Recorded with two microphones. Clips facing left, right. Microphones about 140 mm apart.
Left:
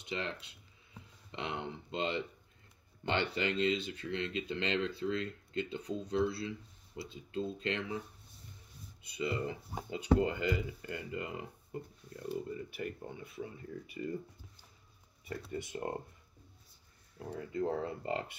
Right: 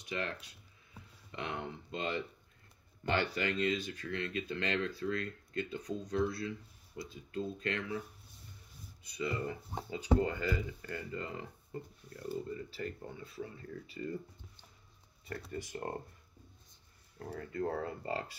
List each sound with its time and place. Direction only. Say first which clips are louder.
0.0 s speech: even; 25° left (ahead or behind)
9.1 s speech: left 1 dB; 25° left (ahead or behind)
15.5 s speech: left 2 dB; 20° left (ahead or behind)
17.2 s speech: left 1 dB; 15° left (ahead or behind)